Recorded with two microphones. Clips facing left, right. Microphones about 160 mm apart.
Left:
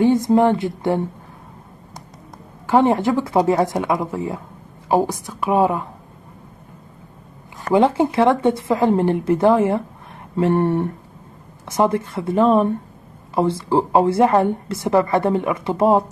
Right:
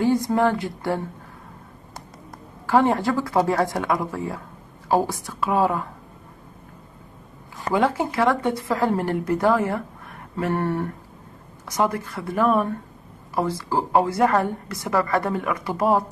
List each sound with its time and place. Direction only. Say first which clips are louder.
0.0 s a woman's voice: left 5 dB; 20° left (ahead or behind)
2.6 s a woman's voice: left 3 dB; 20° left (ahead or behind)
7.7 s a woman's voice: left 6 dB; 25° left (ahead or behind)